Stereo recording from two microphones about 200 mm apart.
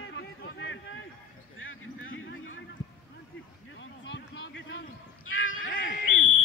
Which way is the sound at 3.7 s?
65° left (ahead or behind).